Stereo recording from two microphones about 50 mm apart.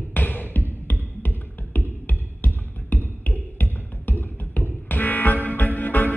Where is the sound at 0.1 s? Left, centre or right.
Left.